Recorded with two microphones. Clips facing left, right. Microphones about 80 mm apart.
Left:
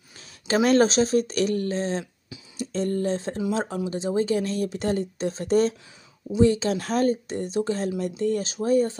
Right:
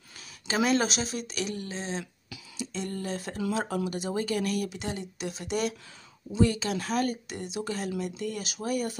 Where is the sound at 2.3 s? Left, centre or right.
Left.